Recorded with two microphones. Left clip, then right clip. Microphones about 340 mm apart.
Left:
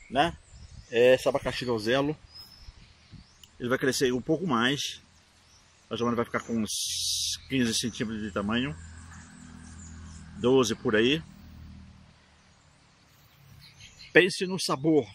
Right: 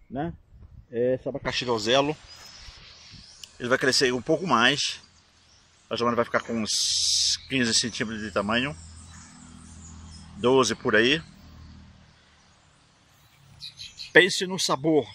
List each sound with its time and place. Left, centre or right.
0.1 s speech: left
1.4 s speech: centre
3.3 s speech: centre
10.4 s speech: centre
14.1 s speech: centre